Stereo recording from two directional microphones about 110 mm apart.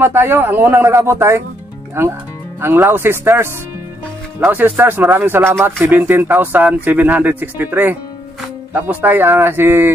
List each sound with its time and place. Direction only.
0.0 s a man's voice: 20° right (ahead or behind)